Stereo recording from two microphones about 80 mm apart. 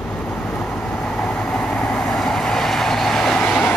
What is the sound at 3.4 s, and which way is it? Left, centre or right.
Vehicle, left.